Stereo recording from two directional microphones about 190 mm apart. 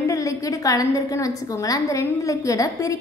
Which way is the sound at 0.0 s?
15° left (ahead or behind).